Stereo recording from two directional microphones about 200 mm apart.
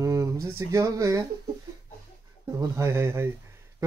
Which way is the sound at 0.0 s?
15° right (ahead or behind).